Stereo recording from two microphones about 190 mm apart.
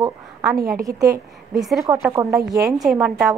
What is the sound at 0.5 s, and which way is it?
Speech, 50° right (ahead or behind).